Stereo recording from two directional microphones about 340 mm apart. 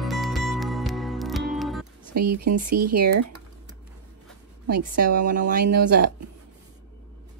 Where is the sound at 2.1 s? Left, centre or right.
Right.